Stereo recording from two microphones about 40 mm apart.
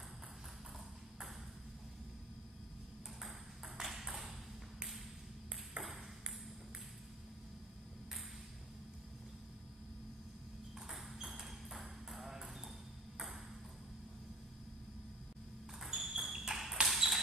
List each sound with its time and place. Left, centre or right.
3.2 s ping: centre
5.8 s ping: right
10.9 s ping: centre
15.8 s a sound: centre